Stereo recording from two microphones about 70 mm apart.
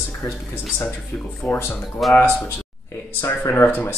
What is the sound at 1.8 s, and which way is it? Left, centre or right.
Speech, centre.